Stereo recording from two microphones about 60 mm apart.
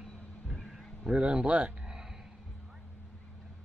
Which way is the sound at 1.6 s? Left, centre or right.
Centre.